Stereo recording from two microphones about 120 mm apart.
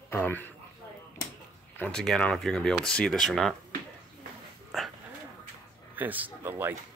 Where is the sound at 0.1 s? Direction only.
15° left (ahead or behind).